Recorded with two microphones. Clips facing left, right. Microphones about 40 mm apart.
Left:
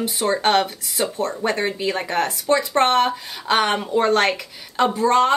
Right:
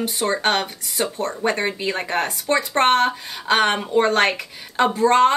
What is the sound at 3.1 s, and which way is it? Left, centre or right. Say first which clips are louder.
A woman's voice: right 1 dB; centre.